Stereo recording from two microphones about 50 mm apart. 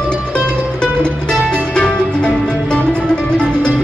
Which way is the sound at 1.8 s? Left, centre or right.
Left.